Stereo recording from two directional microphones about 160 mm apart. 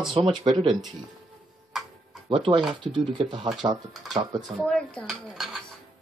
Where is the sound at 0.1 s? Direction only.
30° right (ahead or behind).